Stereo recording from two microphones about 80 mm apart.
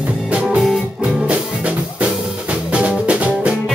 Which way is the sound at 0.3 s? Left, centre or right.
Centre.